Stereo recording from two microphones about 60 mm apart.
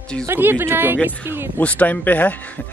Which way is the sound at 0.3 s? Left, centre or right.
Right.